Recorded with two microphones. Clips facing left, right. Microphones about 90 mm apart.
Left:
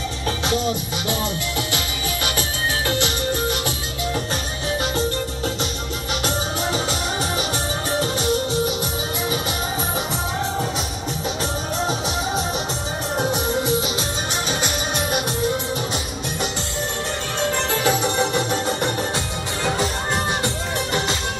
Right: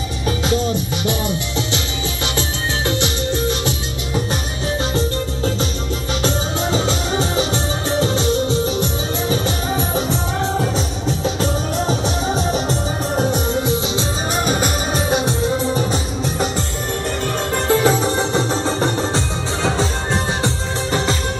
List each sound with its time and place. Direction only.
2.9 s music: 25° right (ahead or behind)
12.4 s music: 40° right (ahead or behind)
14.4 s music: 45° right (ahead or behind)
15.0 s music: 30° right (ahead or behind)